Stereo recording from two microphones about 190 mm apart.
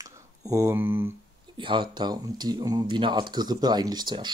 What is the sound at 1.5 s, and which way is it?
Speech, 25° right (ahead or behind).